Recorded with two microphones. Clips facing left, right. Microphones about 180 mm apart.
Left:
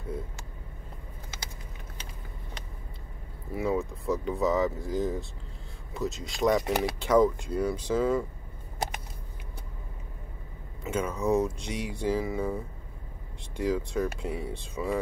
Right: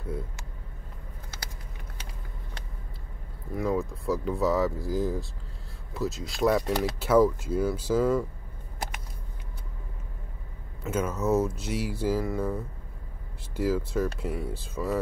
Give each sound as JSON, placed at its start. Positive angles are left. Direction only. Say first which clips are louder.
{"t": 3.5, "sound": "speech", "louder": "right 1 dB", "side_deg": 0}
{"t": 10.8, "sound": "speech", "louder": "right 1 dB", "side_deg": -5}